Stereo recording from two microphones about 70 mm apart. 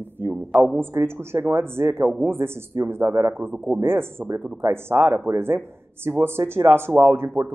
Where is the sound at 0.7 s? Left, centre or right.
Right.